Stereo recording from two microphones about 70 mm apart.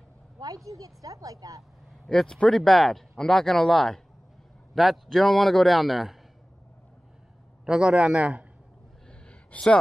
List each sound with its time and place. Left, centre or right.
0.7 s speech: right
2.0 s a man's voice: centre
7.6 s a man's voice: centre
9.3 s a sound: centre